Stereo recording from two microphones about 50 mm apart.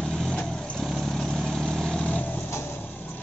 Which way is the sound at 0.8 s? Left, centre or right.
Centre.